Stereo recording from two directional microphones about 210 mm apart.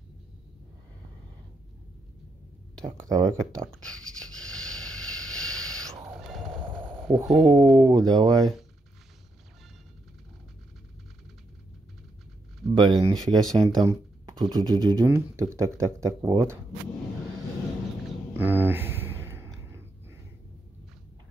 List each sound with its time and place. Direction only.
2.8 s speech: 20° right (ahead or behind)
4.4 s a sound: 5° left (ahead or behind)
6.9 s speech: 5° right (ahead or behind)
7.6 s speech: 20° right (ahead or behind)
12.7 s speech: 20° right (ahead or behind)
18.3 s a sound: 10° right (ahead or behind)